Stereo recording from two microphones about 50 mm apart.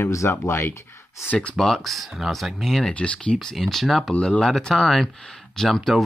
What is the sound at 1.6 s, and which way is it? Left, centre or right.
Speech, centre.